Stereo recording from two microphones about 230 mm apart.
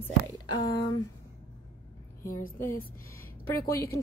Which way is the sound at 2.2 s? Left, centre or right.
Left.